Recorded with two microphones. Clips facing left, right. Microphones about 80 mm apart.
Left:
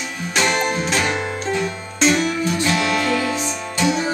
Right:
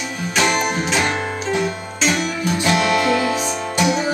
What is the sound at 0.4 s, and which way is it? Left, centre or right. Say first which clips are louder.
Music: right 1 dB; centre.